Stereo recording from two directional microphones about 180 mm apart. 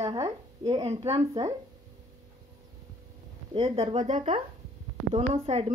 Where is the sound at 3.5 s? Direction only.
30° right (ahead or behind).